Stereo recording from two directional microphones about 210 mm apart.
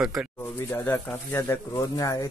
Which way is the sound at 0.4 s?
10° left (ahead or behind).